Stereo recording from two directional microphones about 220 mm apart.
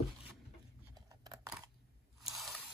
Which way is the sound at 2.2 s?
Centre (ahead or behind).